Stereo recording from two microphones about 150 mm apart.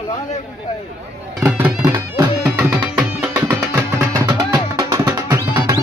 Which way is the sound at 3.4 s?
20° right (ahead or behind).